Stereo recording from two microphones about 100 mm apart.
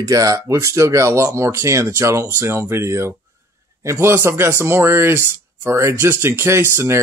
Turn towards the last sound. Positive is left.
turn(degrees=-25)  # may be behind; listen again after turning